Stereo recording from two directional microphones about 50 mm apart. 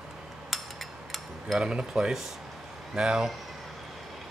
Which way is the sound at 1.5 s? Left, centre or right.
Centre.